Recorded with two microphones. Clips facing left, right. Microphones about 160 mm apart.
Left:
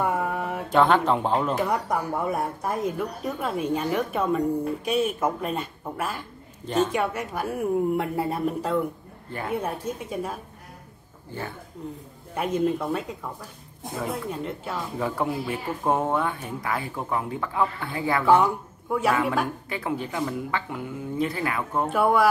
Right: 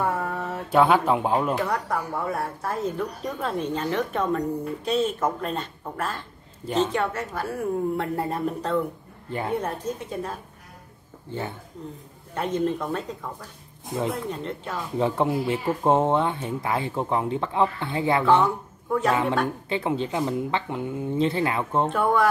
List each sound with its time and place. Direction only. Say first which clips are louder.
0.0 s a sound: left 1 dB; 15° left (ahead or behind)
0.7 s a man's voice: right 1 dB; 10° right (ahead or behind)
1.6 s speech: left 1 dB; 20° left (ahead or behind)
9.3 s speech: right 2 dB; 25° right (ahead or behind)
9.6 s speech: even; 10° left (ahead or behind)
12.4 s speech: left 1 dB; 10° left (ahead or behind)
13.9 s speech: right 3 dB; 25° right (ahead or behind)
14.3 s speech: even; 10° left (ahead or behind)
15.0 s speech: right 5 dB; 25° right (ahead or behind)
18.2 s speech: left 4 dB; 10° left (ahead or behind)
19.7 s speech: right 4 dB; 25° right (ahead or behind)
21.9 s speech: left 3 dB; 10° left (ahead or behind)